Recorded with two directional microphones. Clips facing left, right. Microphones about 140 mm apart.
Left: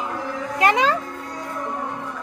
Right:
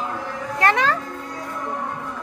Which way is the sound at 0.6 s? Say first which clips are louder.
Left 1 dB; 15° left (ahead or behind).